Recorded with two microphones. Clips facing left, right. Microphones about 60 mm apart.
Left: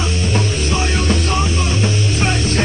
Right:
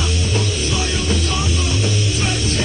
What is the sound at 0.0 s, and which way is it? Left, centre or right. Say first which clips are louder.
Music: left 2 dB; left.